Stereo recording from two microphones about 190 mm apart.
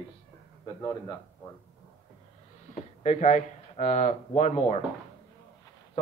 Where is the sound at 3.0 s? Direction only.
40° left (ahead or behind).